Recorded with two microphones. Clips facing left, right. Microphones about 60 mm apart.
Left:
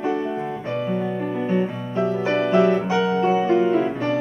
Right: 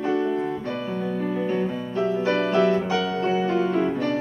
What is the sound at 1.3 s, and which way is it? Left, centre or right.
Music, centre.